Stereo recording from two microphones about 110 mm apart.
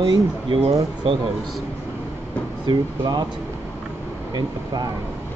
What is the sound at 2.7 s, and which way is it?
Speech, 40° right (ahead or behind).